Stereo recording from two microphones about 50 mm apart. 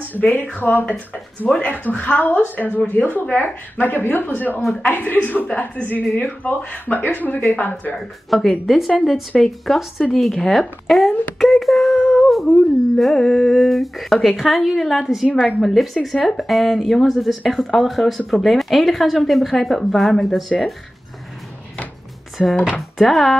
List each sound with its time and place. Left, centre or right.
0.6 s a woman's voice: left
7.9 s speech: centre
11.3 s a sound: centre
12.3 s speech: centre
22.4 s speech: centre